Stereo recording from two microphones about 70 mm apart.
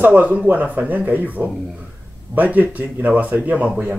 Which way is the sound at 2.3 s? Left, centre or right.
Right.